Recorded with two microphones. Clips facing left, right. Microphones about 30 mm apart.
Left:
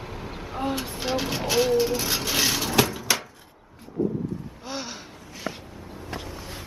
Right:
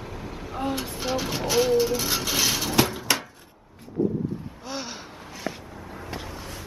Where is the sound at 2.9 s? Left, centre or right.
Right.